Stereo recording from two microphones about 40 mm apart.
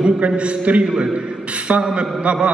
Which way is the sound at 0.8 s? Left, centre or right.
Centre.